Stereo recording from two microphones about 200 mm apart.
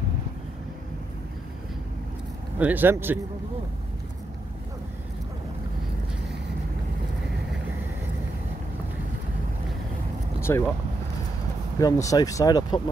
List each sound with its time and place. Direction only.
2.6 s speech: 10° right (ahead or behind)
10.4 s speech: 10° left (ahead or behind)
11.8 s speech: 15° left (ahead or behind)